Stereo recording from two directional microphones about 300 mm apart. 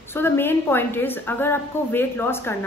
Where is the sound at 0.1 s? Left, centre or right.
Centre.